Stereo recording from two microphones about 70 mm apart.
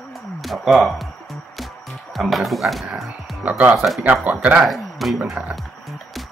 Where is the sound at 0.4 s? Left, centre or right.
Centre.